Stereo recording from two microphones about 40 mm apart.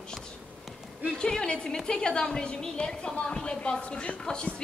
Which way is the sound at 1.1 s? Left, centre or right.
Centre.